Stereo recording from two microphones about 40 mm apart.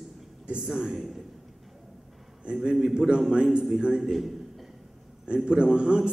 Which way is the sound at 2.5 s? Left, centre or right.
Centre.